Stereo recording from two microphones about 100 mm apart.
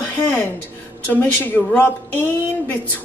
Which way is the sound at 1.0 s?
20° left (ahead or behind).